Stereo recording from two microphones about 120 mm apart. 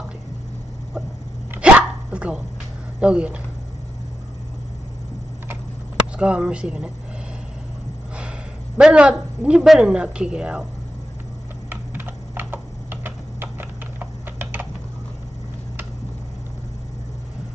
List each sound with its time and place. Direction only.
1.6 s dog: 10° right (ahead or behind)
3.0 s speech: 10° right (ahead or behind)
6.1 s speech: 10° right (ahead or behind)
8.7 s speech: 10° right (ahead or behind)
11.7 s typing: 15° right (ahead or behind)